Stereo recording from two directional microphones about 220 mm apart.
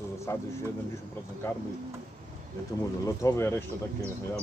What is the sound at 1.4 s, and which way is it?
Speech, 15° left (ahead or behind).